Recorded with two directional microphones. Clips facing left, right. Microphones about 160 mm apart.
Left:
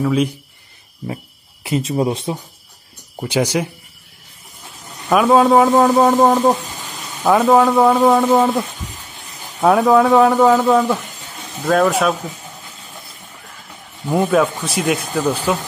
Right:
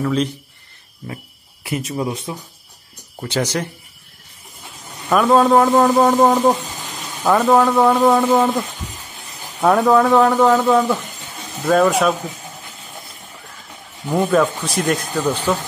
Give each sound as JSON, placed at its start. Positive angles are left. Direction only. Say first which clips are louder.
{"t": 0.0, "sound": "speech", "louder": "left 2 dB", "side_deg": 10}
{"t": 1.0, "sound": "speech", "louder": "left 5 dB", "side_deg": 25}
{"t": 3.2, "sound": "speech", "louder": "left 3 dB", "side_deg": 15}
{"t": 5.1, "sound": "a man's voice", "louder": "left 1 dB", "side_deg": 5}
{"t": 14.0, "sound": "a man's voice", "louder": "left 1 dB", "side_deg": 5}